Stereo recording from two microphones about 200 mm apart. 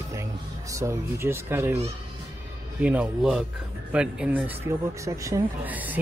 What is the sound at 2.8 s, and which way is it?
Speech, 5° right (ahead or behind).